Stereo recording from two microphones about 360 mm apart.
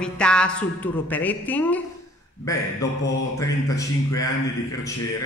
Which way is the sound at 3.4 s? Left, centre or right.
Centre.